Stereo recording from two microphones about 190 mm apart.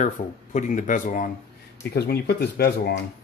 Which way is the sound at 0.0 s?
40° left (ahead or behind).